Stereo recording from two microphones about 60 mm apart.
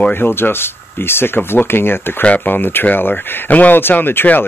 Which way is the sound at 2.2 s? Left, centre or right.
Left.